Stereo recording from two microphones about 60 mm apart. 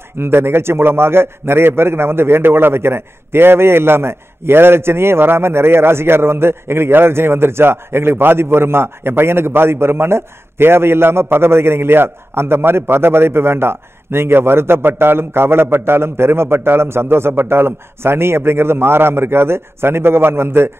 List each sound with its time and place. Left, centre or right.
0.2 s a man's voice: right